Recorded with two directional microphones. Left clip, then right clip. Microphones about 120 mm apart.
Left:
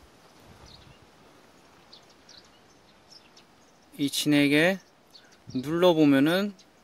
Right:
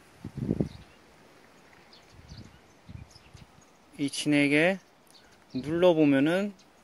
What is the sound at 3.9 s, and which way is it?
Speech, 25° left (ahead or behind).